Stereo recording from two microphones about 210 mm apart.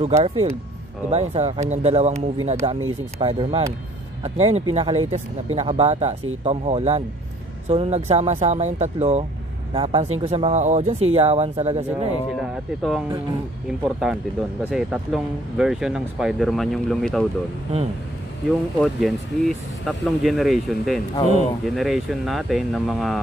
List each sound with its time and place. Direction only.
0.0 s speech: 30° right (ahead or behind)
12.3 s speech: centre (ahead or behind)
18.8 s speech: centre (ahead or behind)
21.1 s speech: 30° left (ahead or behind)
21.6 s speech: centre (ahead or behind)